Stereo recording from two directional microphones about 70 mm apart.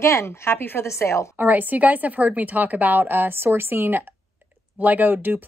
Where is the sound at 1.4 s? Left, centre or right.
Right.